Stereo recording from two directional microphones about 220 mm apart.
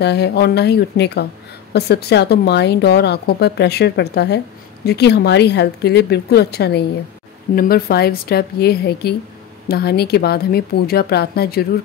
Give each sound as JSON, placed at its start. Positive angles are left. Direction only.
{"t": 0.0, "sound": "speech", "side_deg": 50}